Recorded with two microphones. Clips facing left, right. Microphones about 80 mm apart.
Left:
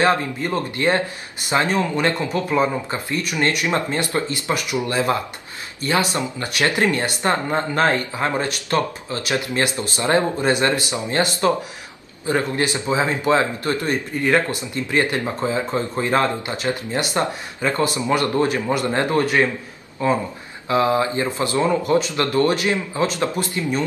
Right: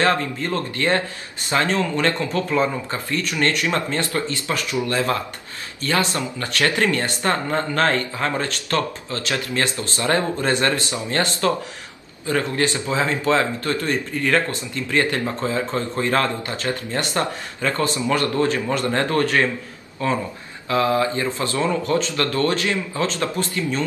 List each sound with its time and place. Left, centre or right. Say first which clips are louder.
0.0 s speech: left 1 dB; centre